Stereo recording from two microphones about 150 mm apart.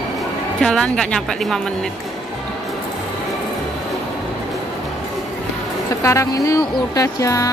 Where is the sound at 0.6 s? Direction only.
5° left (ahead or behind).